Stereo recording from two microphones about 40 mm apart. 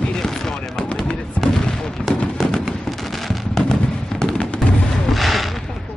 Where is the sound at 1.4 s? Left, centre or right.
Left.